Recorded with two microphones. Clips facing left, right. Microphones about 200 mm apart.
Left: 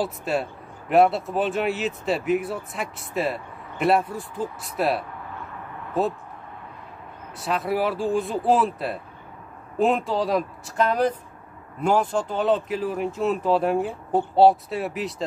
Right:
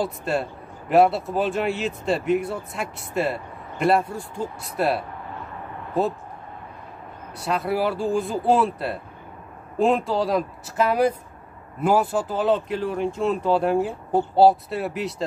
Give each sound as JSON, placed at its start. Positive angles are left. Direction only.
{"t": 0.0, "sound": "speech", "side_deg": 0}
{"t": 7.3, "sound": "speech", "side_deg": 0}